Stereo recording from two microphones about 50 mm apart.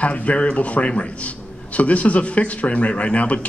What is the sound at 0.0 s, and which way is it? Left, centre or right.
A man's voice, left.